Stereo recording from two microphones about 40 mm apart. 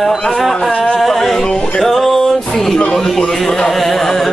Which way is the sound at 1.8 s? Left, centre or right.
Centre.